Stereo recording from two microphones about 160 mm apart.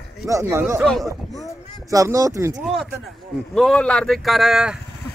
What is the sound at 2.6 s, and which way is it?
Speech, centre (ahead or behind).